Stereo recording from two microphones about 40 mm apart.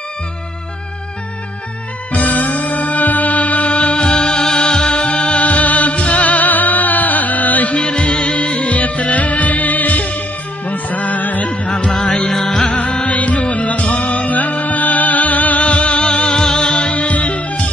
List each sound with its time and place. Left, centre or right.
2.1 s music: left
4.0 s music: centre; by 7.8 s left
7.8 s music: left
12.3 s music: centre
12.7 s music: left
16.9 s music: left